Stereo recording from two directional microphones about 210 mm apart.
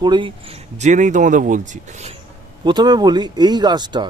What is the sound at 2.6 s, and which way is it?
Speech, 20° right (ahead or behind).